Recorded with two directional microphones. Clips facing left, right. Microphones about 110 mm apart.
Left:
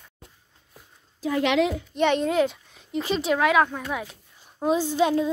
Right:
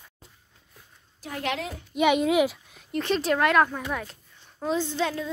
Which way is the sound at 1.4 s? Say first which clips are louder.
Left 8 dB; 90° left.